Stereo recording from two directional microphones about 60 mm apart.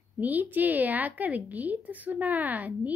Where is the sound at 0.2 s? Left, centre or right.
Right.